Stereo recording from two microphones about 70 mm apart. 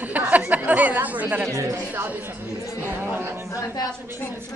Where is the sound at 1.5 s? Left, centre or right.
Right.